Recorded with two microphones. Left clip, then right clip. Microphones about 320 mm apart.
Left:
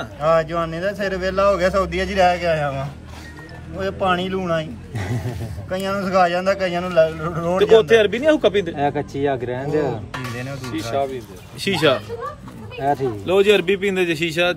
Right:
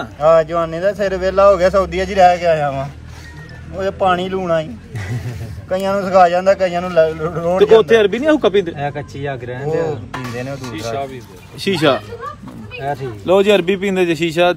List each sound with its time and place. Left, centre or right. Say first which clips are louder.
0.2 s speech: right 6 dB; centre
4.9 s a sound: left 2 dB; left
5.7 s speech: right 6 dB; centre
7.7 s a man's voice: right 2 dB; centre
8.7 s speech: left 2 dB; left
10.1 s speech: right 4 dB; centre
11.6 s a man's voice: right 3 dB; centre
12.7 s speech: left 2 dB; left
13.2 s speech: right 5 dB; centre